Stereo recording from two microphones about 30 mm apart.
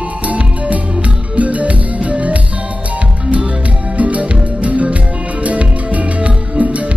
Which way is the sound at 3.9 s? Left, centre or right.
Right.